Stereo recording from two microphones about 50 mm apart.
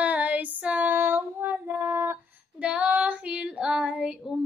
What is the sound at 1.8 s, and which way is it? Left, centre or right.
Female singing, right.